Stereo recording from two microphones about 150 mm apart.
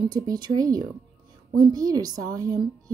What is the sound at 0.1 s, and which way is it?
A woman's voice, 25° right (ahead or behind).